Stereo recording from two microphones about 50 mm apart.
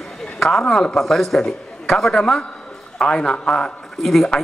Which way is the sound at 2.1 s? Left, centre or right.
Centre.